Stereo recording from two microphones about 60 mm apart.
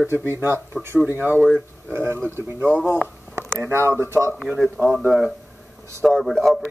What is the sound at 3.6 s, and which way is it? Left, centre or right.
Speech, right.